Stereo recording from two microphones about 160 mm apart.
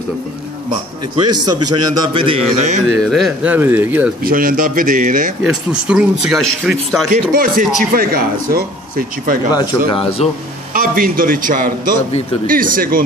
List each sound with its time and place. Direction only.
1.3 s a man's voice: 25° right (ahead or behind); by 2.8 s 40° right (ahead or behind)
2.9 s speech: centre (ahead or behind)
3.5 s speech: 10° right (ahead or behind)
4.2 s a man's voice: 60° right (ahead or behind)
5.4 s speech: 5° right (ahead or behind)
7.1 s a man's voice: 60° right (ahead or behind)
9.5 s speech: 25° left (ahead or behind)
10.7 s a man's voice: 65° right (ahead or behind)